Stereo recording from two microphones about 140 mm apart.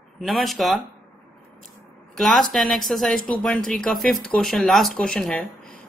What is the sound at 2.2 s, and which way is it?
A woman's voice, centre (ahead or behind).